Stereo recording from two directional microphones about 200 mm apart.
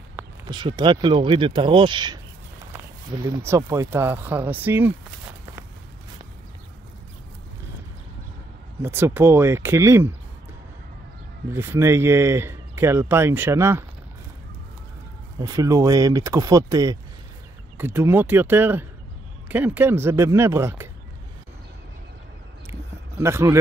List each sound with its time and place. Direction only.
0.5 s speech: 20° right (ahead or behind)
3.3 s speech: 15° right (ahead or behind)
8.8 s speech: 10° right (ahead or behind)
11.5 s speech: 15° right (ahead or behind)
15.3 s speech: 15° right (ahead or behind)
22.7 s a sound: 15° right (ahead or behind)